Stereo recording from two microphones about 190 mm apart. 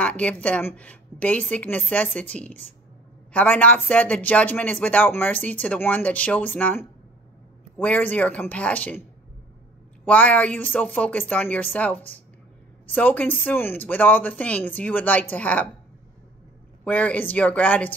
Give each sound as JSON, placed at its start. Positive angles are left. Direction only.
{"t": 0.0, "sound": "speech", "side_deg": 5}
{"t": 10.0, "sound": "speech", "side_deg": 5}
{"t": 16.8, "sound": "speech", "side_deg": 5}